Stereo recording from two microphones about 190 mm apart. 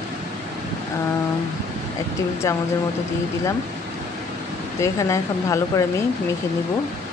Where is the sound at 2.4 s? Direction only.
15° left (ahead or behind).